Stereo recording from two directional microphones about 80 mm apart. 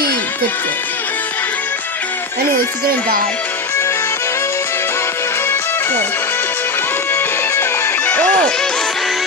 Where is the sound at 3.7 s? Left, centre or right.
Left.